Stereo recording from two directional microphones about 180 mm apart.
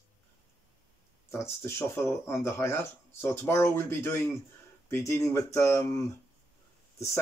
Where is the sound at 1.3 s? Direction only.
15° left (ahead or behind).